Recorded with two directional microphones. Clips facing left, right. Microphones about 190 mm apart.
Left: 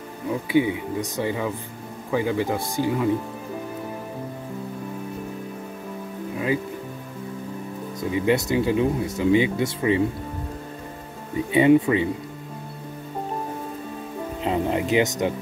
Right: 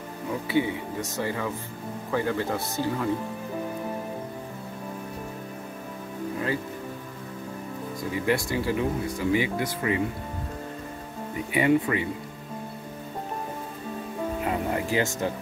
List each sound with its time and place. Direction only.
0.5 s speech: 15° left (ahead or behind)
8.1 s speech: 20° left (ahead or behind)
11.5 s speech: 20° left (ahead or behind)
14.4 s speech: 20° left (ahead or behind)